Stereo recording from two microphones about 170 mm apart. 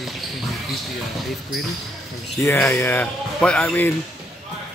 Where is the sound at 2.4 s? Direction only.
15° left (ahead or behind).